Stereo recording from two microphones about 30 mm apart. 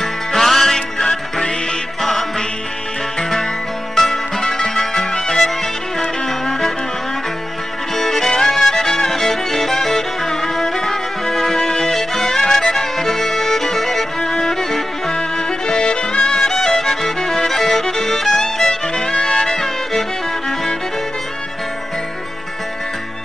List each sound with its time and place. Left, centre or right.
0.0 s music: centre
7.9 s music: centre
15.1 s music: left; by 20.5 s centre